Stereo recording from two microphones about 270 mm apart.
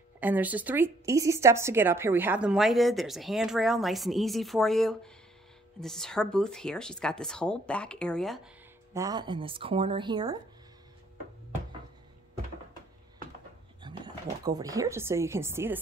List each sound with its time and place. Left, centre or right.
0.2 s speech: centre
8.9 s speech: centre
13.8 s speech: centre